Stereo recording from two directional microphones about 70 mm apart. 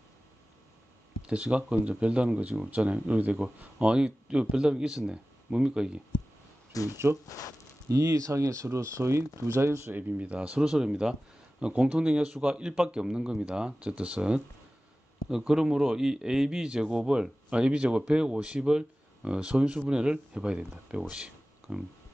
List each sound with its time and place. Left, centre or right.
1.2 s a man's voice: centre
6.7 s speech: left
7.9 s speech: right
9.9 s speech: right
10.6 s a man's voice: centre
21.1 s a sound: centre